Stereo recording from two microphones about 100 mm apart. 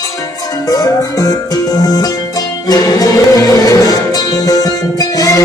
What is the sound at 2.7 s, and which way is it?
Music, 40° left (ahead or behind).